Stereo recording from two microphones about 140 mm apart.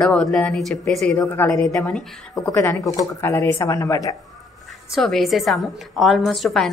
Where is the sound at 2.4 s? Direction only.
20° left (ahead or behind).